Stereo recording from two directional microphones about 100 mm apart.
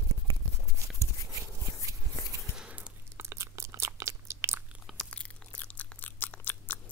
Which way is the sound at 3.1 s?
30° right (ahead or behind).